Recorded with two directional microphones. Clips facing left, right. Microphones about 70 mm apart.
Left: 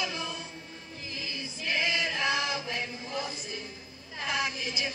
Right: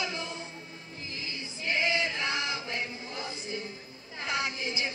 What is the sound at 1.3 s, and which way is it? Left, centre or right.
Chant, right.